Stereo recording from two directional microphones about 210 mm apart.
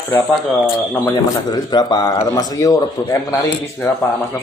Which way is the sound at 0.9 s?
15° left (ahead or behind).